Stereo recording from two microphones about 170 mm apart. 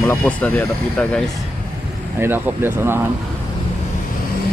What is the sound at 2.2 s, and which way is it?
Speech, 15° right (ahead or behind).